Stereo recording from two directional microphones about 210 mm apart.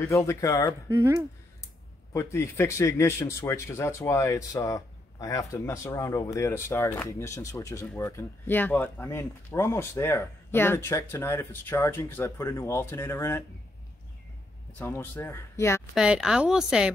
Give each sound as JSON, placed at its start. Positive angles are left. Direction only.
{"t": 0.0, "sound": "speech", "side_deg": 15}
{"t": 0.8, "sound": "speech", "side_deg": -15}
{"t": 2.1, "sound": "speech", "side_deg": 10}
{"t": 14.7, "sound": "speech", "side_deg": 10}
{"t": 15.9, "sound": "a woman's voice", "side_deg": -5}